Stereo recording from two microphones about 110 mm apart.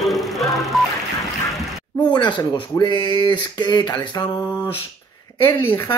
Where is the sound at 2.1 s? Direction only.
45° left (ahead or behind).